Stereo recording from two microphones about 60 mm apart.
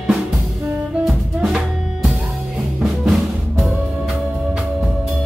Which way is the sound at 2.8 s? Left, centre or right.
Centre.